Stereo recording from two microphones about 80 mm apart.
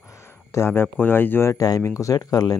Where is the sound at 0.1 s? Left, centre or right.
Left.